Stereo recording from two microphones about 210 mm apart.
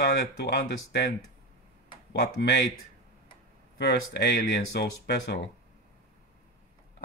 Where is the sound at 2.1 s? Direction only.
50° left (ahead or behind).